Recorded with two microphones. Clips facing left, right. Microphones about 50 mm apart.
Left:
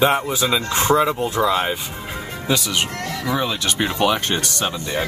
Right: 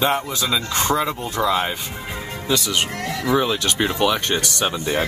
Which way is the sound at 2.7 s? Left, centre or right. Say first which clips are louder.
Even; centre.